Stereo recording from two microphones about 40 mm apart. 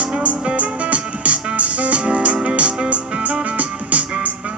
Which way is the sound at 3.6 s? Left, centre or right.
Right.